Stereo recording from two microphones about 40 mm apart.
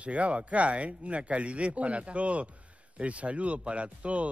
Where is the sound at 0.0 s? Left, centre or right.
Right.